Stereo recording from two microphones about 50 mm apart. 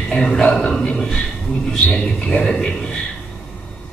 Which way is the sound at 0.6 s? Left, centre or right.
Centre.